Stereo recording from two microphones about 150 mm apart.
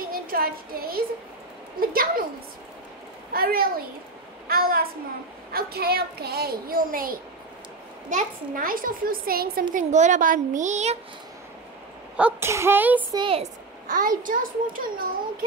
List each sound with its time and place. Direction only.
0.0 s a sound: 80° right
1.8 s a child's voice: 75° right (ahead or behind)
3.3 s a woman's voice: 80° right
9.8 s a woman's voice: 50° right (ahead or behind)
12.2 s speech: 15° right (ahead or behind)
13.1 s speech: 30° right (ahead or behind)
13.8 s a child's voice: 65° right (ahead or behind)